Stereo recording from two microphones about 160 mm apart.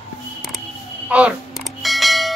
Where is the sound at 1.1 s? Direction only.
10° right (ahead or behind).